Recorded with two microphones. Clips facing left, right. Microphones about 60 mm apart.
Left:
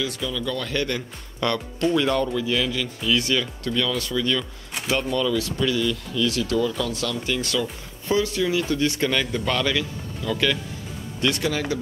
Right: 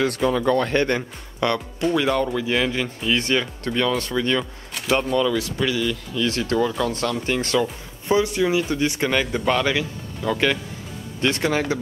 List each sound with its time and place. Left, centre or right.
0.0 s speech: right
1.4 s speech: right
5.1 s speech: centre
5.4 s speech: right